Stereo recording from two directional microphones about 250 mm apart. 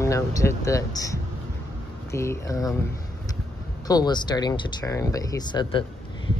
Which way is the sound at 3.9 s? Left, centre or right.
Centre.